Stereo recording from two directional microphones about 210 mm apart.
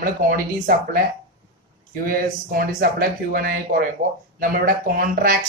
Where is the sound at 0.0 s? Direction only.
45° right (ahead or behind).